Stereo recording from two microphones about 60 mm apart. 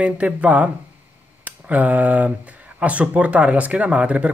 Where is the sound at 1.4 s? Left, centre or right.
Right.